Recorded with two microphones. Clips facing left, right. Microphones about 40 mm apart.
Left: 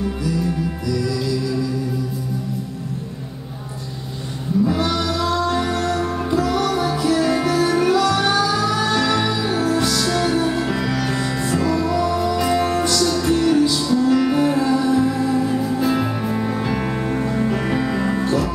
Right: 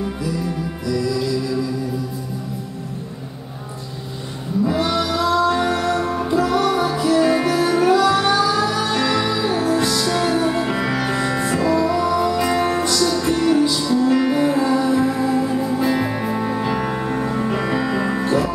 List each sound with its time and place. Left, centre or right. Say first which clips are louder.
4.6 s music: right 1 dB; centre